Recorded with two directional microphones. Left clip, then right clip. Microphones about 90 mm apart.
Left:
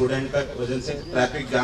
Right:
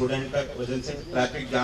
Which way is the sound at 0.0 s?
20° left (ahead or behind).